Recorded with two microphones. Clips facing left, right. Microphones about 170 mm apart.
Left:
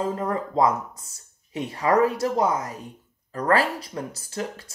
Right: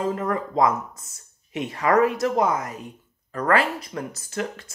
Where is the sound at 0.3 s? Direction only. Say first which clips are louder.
Even; 30° left (ahead or behind).